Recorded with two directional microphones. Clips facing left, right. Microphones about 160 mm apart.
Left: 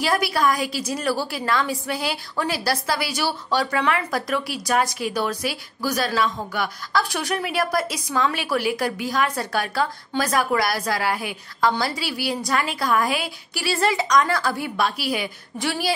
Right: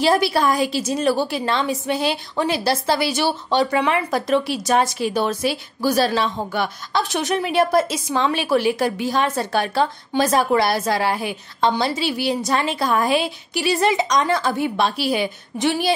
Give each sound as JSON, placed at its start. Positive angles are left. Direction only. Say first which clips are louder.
{"t": 0.0, "sound": "a woman's voice", "louder": "right 4 dB", "side_deg": -30}